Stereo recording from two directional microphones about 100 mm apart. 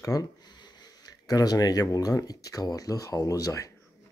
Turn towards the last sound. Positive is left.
turn(degrees=35)  # may be behind; listen again after turning